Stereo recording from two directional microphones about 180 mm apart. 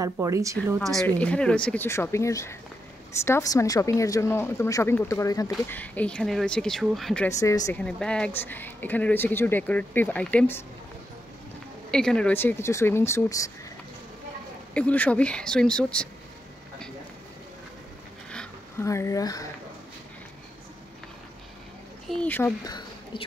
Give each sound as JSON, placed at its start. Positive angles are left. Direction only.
{"t": 0.0, "sound": "a woman's voice", "side_deg": -15}
{"t": 0.7, "sound": "speech", "side_deg": 5}
{"t": 5.7, "sound": "speech", "side_deg": 10}
{"t": 7.2, "sound": "speech", "side_deg": 15}
{"t": 7.8, "sound": "speech", "side_deg": 5}
{"t": 11.9, "sound": "speech", "side_deg": 5}
{"t": 14.7, "sound": "speech", "side_deg": 5}
{"t": 18.3, "sound": "a sound", "side_deg": 5}
{"t": 18.9, "sound": "speech", "side_deg": 15}
{"t": 22.0, "sound": "speech", "side_deg": 5}
{"t": 22.6, "sound": "a sound", "side_deg": 25}